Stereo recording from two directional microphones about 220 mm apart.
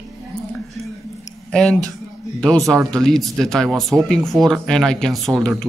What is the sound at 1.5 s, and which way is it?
Speech, 5° left (ahead or behind).